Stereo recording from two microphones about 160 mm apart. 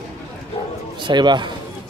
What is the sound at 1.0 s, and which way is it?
Speech, 30° right (ahead or behind).